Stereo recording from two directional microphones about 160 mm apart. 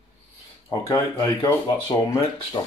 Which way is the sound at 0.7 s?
20° left (ahead or behind).